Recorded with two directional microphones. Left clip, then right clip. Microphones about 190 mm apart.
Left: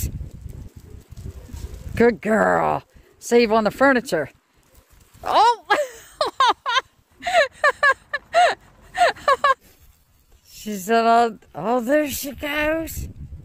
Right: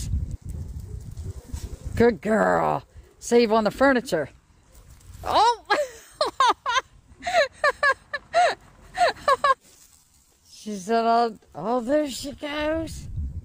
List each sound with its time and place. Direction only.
2.0 s speech: 15° left (ahead or behind)
5.2 s a sound: 15° left (ahead or behind)
10.9 s speech: 20° left (ahead or behind)